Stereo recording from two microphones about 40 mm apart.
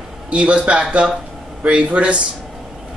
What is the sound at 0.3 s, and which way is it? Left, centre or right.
A man's voice, right.